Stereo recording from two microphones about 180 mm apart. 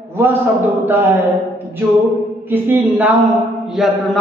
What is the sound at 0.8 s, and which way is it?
Speech, 10° right (ahead or behind).